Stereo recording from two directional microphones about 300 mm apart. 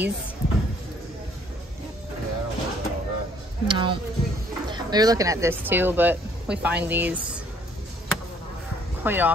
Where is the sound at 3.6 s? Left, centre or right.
Centre.